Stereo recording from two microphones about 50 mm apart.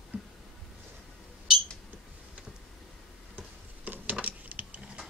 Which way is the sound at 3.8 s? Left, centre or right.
Right.